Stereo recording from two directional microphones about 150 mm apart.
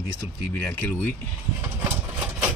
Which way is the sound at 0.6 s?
10° left (ahead or behind).